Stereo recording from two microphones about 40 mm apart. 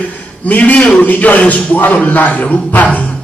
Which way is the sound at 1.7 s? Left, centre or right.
Left.